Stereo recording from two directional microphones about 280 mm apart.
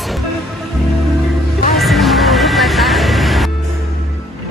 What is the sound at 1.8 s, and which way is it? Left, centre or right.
Music, centre.